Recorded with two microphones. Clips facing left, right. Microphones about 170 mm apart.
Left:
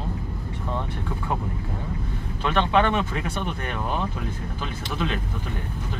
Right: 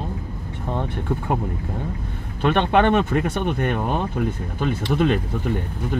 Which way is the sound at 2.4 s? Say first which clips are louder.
Right 4 dB; 55° right (ahead or behind).